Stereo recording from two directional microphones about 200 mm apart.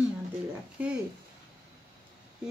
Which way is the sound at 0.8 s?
10° right (ahead or behind).